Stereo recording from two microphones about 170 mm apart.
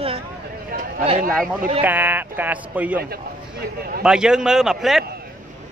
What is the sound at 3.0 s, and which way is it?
A man's voice, 65° right (ahead or behind).